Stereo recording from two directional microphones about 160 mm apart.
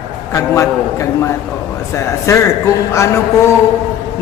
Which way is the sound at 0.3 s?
20° left (ahead or behind).